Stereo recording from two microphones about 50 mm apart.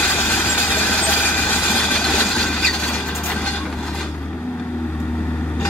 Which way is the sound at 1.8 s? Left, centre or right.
Centre.